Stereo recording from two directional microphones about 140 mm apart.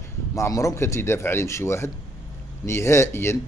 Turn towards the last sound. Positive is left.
turn(degrees=20)  # may be behind; listen again after turning